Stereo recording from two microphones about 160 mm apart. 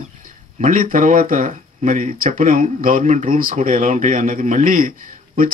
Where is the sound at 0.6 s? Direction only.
60° right (ahead or behind).